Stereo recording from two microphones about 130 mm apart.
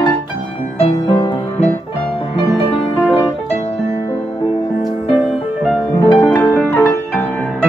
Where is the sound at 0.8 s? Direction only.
40° left (ahead or behind).